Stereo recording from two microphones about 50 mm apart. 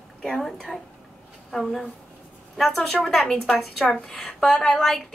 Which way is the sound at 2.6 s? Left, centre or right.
Centre.